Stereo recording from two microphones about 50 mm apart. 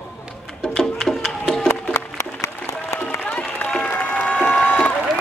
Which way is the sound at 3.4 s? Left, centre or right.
Left.